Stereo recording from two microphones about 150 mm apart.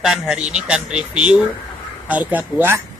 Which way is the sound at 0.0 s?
5° right (ahead or behind).